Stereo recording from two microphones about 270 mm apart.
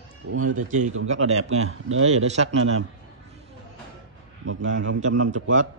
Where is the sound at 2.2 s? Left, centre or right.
Right.